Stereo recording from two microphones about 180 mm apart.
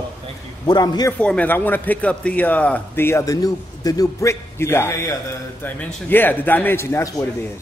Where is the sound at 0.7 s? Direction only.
20° left (ahead or behind).